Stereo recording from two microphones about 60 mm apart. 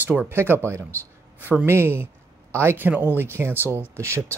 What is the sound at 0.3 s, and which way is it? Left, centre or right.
Speech, right.